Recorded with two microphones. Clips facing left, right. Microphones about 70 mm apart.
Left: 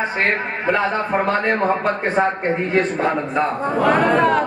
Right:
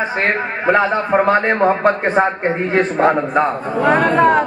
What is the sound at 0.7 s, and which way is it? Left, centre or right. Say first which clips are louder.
A man's voice: right 5 dB; right.